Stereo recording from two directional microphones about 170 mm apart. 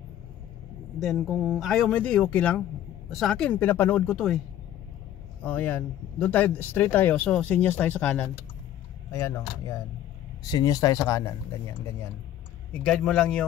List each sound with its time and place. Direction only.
0.9 s speech: centre (ahead or behind)
5.4 s speech: 10° left (ahead or behind)